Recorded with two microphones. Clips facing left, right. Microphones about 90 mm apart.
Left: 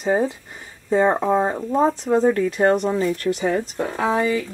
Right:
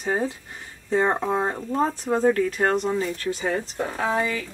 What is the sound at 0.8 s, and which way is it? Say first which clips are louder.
Speech: left 4 dB; 10° left (ahead or behind).